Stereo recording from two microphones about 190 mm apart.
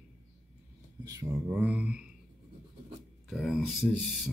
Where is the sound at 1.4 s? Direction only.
5° right (ahead or behind).